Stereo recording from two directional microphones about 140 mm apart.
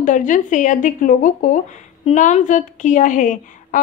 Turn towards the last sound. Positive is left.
turn(degrees=65)  # may be behind; listen again after turning